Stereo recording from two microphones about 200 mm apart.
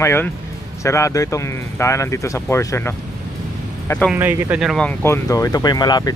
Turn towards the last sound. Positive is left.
turn(degrees=20)  # may be behind; listen again after turning